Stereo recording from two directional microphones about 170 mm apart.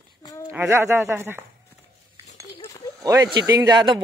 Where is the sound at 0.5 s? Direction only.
15° right (ahead or behind).